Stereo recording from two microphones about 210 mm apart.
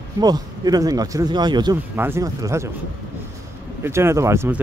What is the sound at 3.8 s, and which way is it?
Speech, 10° right (ahead or behind).